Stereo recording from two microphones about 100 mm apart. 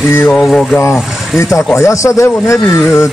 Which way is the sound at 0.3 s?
5° left (ahead or behind).